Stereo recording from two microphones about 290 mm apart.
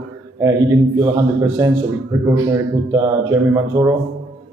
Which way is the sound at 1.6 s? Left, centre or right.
Centre.